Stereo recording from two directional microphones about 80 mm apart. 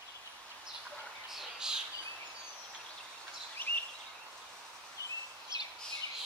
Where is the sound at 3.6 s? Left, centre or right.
Left.